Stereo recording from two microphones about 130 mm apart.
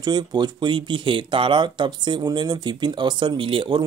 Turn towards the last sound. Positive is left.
turn(degrees=-40)  # may be behind; listen again after turning